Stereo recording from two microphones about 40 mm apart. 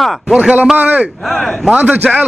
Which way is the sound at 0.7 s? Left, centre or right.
Right.